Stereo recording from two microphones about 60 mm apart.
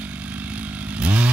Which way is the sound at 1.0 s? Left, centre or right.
Right.